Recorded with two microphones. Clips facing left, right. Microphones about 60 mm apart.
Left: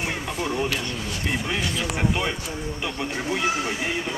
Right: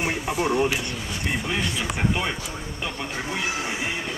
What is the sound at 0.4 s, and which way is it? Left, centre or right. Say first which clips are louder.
Speech: right 4 dB; centre.